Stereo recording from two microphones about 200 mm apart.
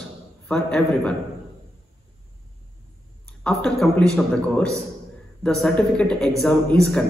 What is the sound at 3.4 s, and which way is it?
A man's voice, centre (ahead or behind).